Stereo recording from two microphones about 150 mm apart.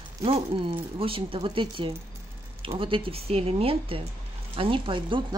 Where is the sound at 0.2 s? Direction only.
40° right (ahead or behind).